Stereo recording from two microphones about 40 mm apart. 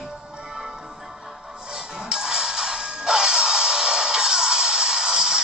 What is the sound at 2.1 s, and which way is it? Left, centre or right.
Music, centre.